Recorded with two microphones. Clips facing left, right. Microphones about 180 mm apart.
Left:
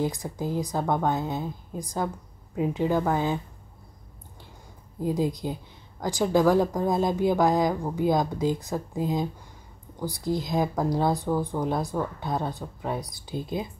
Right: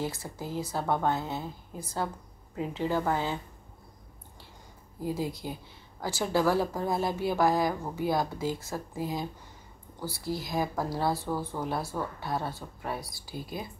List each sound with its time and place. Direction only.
0.0 s a woman's voice: 15° left (ahead or behind)
5.0 s a woman's voice: 15° left (ahead or behind)